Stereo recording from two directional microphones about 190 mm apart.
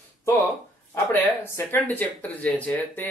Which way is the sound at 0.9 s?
15° left (ahead or behind).